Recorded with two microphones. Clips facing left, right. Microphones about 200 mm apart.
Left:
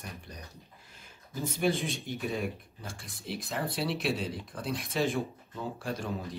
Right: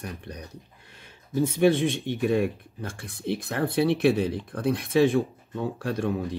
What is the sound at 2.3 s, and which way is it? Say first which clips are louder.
Speech: right 10 dB; 60° right (ahead or behind).